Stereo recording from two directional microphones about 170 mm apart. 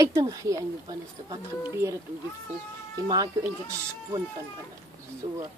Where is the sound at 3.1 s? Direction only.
20° right (ahead or behind).